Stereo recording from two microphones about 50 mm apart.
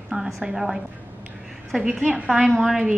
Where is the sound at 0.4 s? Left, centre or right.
Centre.